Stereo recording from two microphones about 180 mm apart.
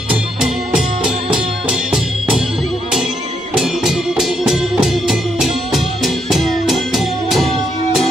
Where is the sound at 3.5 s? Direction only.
Centre (ahead or behind).